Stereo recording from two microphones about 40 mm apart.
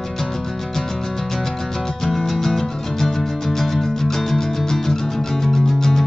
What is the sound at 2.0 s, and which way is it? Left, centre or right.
Music, centre.